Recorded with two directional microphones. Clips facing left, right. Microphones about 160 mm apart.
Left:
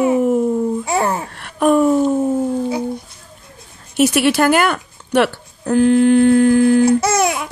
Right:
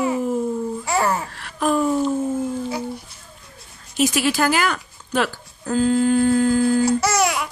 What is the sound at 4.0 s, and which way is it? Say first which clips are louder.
Speech: left 5 dB; 65° left (ahead or behind).